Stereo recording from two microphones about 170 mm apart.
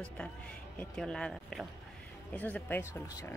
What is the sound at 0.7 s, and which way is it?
A woman's voice, 5° left (ahead or behind).